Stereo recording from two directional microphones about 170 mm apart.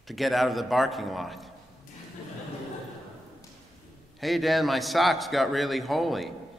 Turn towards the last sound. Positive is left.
turn(degrees=0)  # may be behind; listen again after turning